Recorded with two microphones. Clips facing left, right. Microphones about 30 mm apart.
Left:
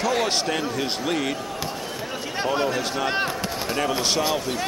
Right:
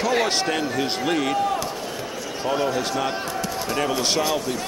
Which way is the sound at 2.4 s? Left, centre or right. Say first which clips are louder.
Right 1 dB; left.